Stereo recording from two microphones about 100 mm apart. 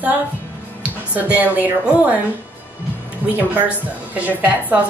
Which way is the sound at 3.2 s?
15° right (ahead or behind).